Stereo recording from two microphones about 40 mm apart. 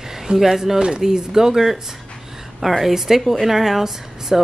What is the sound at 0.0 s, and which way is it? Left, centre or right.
Speech, centre.